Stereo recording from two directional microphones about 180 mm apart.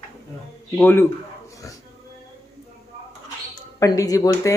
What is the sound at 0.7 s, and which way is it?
Speech, 10° left (ahead or behind).